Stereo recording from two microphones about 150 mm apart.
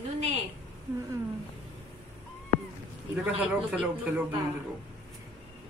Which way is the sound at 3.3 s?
10° right (ahead or behind).